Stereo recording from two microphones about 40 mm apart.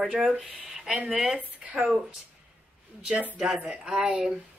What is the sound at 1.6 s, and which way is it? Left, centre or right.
Speech, centre.